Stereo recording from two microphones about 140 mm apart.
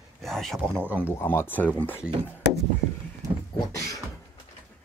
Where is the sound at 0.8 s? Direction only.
10° right (ahead or behind).